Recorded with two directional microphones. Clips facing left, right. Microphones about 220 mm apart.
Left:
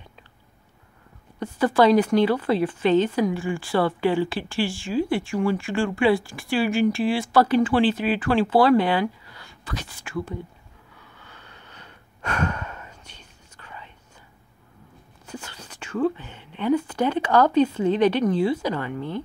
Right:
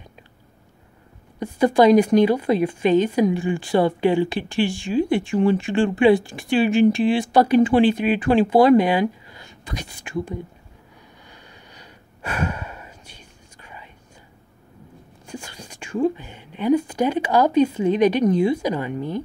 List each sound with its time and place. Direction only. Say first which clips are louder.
1.4 s a woman's voice: right 3 dB; 15° right (ahead or behind)
11.0 s breathing: right 1 dB; 15° right (ahead or behind)
15.2 s speech: right 2 dB; 10° right (ahead or behind)